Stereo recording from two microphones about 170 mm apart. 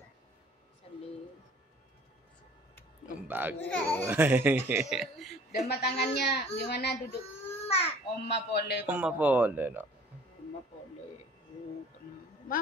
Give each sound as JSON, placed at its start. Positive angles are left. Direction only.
{"t": 3.2, "sound": "a man's voice", "side_deg": -10}
{"t": 3.5, "sound": "a child's voice", "side_deg": 10}
{"t": 4.0, "sound": "a man's voice", "side_deg": -10}
{"t": 5.7, "sound": "a child's voice", "side_deg": 70}
{"t": 7.6, "sound": "babbling", "side_deg": 35}
{"t": 8.2, "sound": "a man's voice", "side_deg": 80}
{"t": 8.8, "sound": "a man's voice", "side_deg": -10}